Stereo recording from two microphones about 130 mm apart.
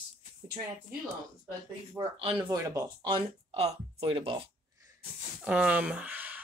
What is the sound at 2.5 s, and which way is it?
Speech, 25° right (ahead or behind).